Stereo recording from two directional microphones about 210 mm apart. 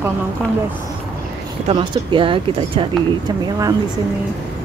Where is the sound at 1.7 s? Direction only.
25° right (ahead or behind).